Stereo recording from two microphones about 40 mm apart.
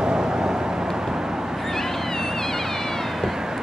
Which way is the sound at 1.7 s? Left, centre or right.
Centre.